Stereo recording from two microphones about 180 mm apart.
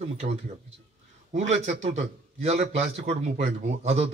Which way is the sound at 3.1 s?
35° right (ahead or behind).